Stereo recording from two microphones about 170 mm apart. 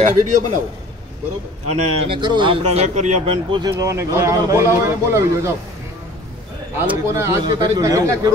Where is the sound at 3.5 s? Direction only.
20° right (ahead or behind).